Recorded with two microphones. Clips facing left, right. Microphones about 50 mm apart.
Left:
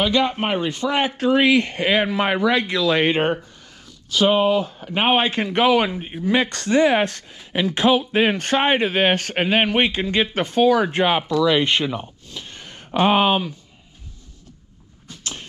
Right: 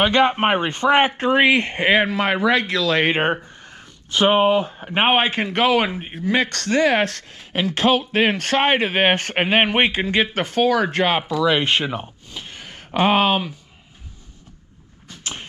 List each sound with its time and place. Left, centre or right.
0.0 s speech: right
2.5 s speech: centre
3.1 s speech: right
5.5 s speech: centre
5.9 s a man's voice: centre
6.4 s speech: centre
7.7 s speech: right
8.1 s speech: centre
8.7 s a man's voice: centre
9.1 s speech: right
10.3 s speech: centre
10.9 s speech: centre
11.1 s speech: centre